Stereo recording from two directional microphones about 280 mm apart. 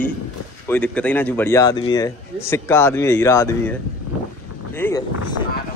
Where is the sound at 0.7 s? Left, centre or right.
Centre.